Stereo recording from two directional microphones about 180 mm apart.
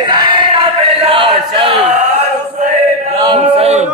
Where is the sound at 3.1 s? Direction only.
25° right (ahead or behind).